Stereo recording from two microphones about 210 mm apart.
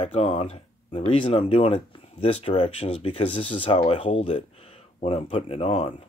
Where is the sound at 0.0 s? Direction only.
25° left (ahead or behind).